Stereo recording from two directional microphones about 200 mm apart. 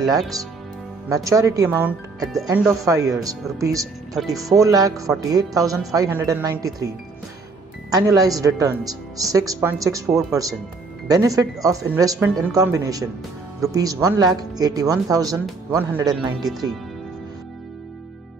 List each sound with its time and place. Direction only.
0.2 s speech: centre (ahead or behind)
1.0 s speech: 15° right (ahead or behind)
7.9 s speech: 20° right (ahead or behind)